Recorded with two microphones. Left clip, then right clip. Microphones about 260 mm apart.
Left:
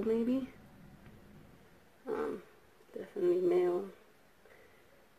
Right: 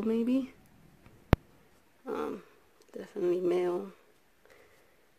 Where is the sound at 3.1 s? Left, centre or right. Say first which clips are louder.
Right 1 dB; right.